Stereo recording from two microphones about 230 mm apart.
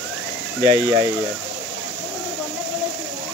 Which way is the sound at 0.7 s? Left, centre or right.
Right.